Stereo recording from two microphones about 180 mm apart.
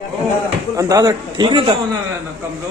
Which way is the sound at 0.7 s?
20° right (ahead or behind).